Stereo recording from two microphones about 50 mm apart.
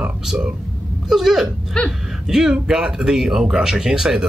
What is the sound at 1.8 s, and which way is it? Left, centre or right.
Speech, centre.